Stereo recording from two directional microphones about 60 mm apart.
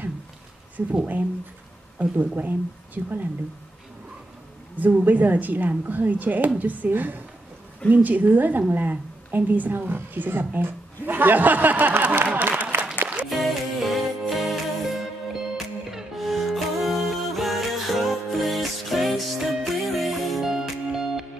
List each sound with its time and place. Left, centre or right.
0.7 s a woman's voice: right
4.7 s a woman's voice: right
12.7 s applause: right
13.3 s music: centre